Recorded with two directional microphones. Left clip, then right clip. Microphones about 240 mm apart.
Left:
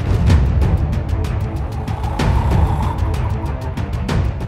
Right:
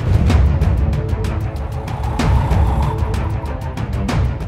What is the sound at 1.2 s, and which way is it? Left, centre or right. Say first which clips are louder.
Music: right 1 dB; centre.